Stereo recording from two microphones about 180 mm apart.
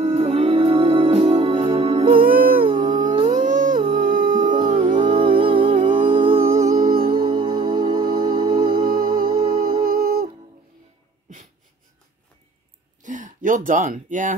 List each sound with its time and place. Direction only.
0.0 s music: 30° right (ahead or behind)
2.6 s howl: 25° right (ahead or behind)
3.1 s music: 30° right (ahead or behind)
3.3 s music: 45° right (ahead or behind)
4.0 s a sound: 45° right (ahead or behind)
4.8 s music: 25° right (ahead or behind)
6.4 s music: 15° right (ahead or behind)
9.8 s music: 55° right (ahead or behind)
13.0 s a sound: 45° right (ahead or behind)